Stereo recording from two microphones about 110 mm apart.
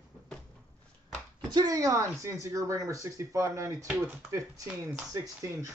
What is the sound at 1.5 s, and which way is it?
Speech, 35° right (ahead or behind).